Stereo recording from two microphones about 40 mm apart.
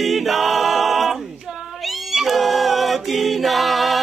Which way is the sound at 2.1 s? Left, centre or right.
Centre.